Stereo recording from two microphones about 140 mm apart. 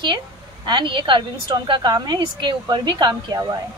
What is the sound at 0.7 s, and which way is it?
A woman's voice, 35° right (ahead or behind).